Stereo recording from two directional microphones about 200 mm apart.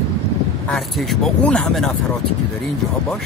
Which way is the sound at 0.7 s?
5° left (ahead or behind).